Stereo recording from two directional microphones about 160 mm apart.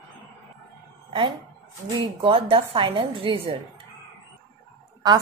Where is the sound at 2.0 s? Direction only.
35° right (ahead or behind).